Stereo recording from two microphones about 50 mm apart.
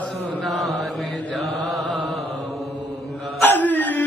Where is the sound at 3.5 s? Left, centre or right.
Left.